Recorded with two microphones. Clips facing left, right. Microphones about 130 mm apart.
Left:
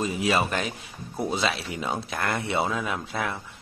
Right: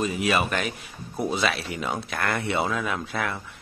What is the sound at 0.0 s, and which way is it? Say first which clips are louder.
Speech: even; 25° left (ahead or behind).